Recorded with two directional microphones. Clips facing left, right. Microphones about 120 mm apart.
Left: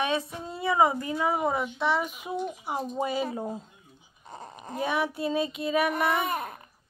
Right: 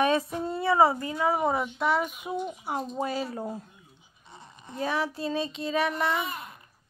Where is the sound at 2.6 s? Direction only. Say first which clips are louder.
Left 1 dB; 5° left (ahead or behind).